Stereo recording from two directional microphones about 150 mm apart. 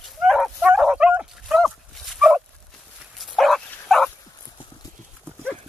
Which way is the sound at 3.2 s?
Centre (ahead or behind).